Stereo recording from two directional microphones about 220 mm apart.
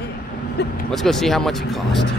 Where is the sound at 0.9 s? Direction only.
Centre (ahead or behind).